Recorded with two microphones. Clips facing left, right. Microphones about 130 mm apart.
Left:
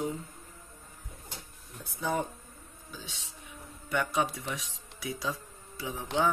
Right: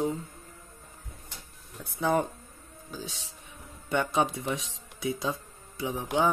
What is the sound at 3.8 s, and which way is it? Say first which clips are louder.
Speech: right 3 dB; 25° right (ahead or behind).